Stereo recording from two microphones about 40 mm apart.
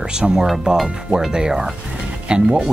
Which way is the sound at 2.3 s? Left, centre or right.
Right.